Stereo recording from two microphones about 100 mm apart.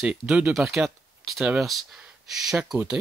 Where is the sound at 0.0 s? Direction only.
10° right (ahead or behind).